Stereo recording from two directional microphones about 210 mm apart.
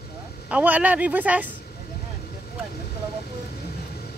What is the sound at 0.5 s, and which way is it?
Speech, 5° right (ahead or behind).